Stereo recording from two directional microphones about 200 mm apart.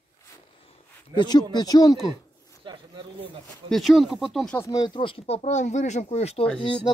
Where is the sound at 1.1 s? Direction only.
20° left (ahead or behind).